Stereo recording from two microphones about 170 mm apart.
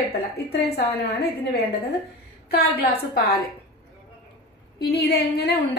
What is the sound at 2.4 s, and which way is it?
Speech, 65° left (ahead or behind).